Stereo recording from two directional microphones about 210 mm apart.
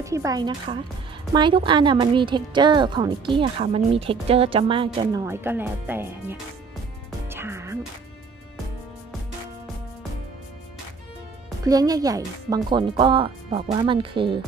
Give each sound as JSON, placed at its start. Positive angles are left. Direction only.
{"t": 0.0, "sound": "a woman's voice", "side_deg": -15}
{"t": 7.2, "sound": "music", "side_deg": -10}
{"t": 11.6, "sound": "a woman's voice", "side_deg": -15}